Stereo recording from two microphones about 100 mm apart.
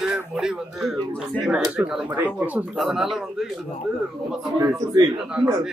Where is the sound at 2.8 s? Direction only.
5° right (ahead or behind).